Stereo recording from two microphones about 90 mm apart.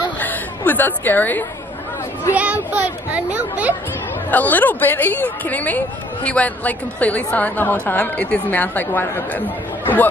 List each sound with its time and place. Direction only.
0.2 s a sound: 20° left (ahead or behind)
2.3 s speech: 15° right (ahead or behind)
4.3 s a woman's voice: 20° left (ahead or behind)